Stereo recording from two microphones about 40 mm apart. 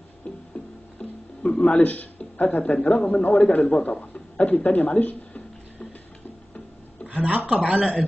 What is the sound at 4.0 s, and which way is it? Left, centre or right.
Chuckle, left.